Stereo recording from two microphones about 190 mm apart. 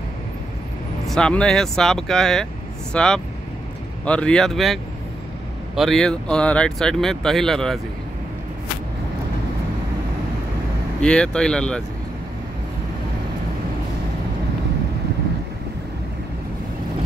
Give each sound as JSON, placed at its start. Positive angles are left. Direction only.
{"t": 1.0, "sound": "speech", "side_deg": 5}
{"t": 5.8, "sound": "speech", "side_deg": 0}
{"t": 11.0, "sound": "speech", "side_deg": 5}